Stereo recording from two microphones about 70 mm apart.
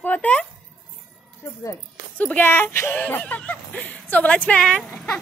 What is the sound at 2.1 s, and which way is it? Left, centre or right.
Speech, left.